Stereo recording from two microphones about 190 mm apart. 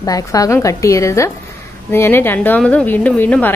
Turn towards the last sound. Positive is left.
turn(degrees=10)  # may be behind; listen again after turning